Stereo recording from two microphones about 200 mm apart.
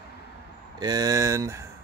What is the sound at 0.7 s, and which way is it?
Speech, 20° right (ahead or behind).